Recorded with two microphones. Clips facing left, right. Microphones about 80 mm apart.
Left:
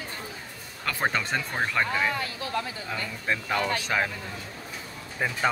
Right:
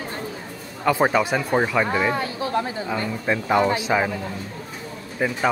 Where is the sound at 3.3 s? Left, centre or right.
Right.